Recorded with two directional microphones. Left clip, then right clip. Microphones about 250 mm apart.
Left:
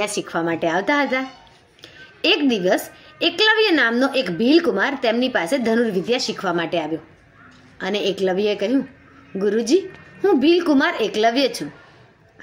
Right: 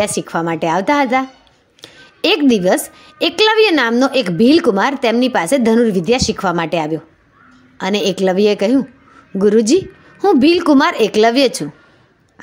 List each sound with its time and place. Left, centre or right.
0.0 s a woman's voice: right